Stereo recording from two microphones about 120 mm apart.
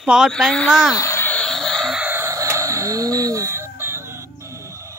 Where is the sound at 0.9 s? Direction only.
25° left (ahead or behind); by 2.0 s centre (ahead or behind).